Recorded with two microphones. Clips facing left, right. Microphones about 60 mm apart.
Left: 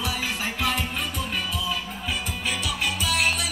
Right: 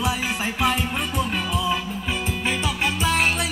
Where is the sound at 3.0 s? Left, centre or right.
Right.